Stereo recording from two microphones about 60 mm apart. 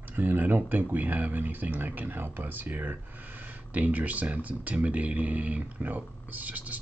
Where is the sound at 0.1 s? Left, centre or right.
Right.